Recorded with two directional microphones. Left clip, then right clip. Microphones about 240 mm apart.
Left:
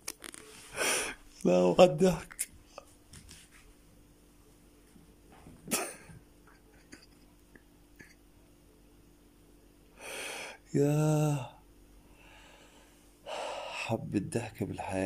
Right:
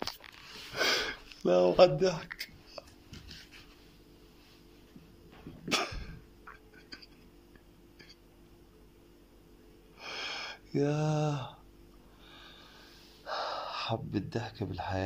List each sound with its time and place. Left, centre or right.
0.7 s gasp: centre
2.8 s chopping: centre
9.9 s a sound: centre
12.3 s snort: centre
13.2 s speech: centre